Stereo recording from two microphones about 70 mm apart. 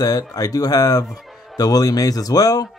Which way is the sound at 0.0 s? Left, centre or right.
Left.